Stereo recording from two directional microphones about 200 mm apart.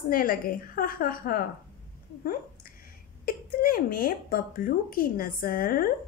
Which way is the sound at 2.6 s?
45° left (ahead or behind).